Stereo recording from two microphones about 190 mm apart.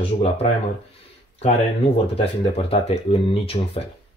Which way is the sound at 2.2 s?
30° left (ahead or behind).